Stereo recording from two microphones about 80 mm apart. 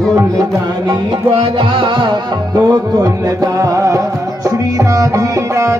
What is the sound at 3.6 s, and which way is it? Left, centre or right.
Music, right.